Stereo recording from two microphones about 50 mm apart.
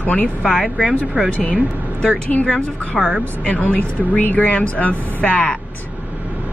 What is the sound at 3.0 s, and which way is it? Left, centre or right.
Speech, centre.